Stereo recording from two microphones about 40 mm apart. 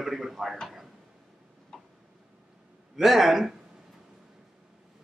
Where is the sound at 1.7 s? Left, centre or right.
Centre.